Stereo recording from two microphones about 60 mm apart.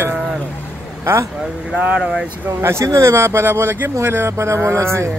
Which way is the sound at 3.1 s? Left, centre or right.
Right.